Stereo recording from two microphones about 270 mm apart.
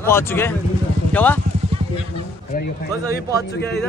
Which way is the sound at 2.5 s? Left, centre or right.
Left.